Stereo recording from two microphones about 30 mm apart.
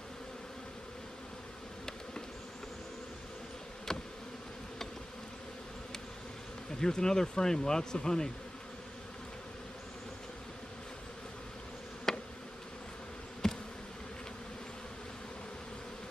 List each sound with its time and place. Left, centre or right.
6.8 s speech: left
12.1 s insect: centre
13.4 s bee: centre